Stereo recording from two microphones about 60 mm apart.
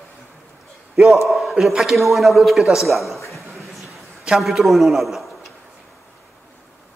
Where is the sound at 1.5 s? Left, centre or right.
Centre.